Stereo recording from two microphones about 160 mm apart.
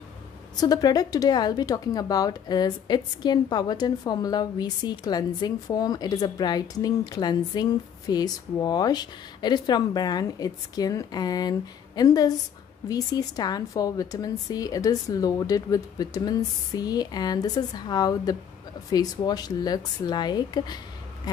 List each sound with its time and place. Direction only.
0.6 s speech: 25° left (ahead or behind)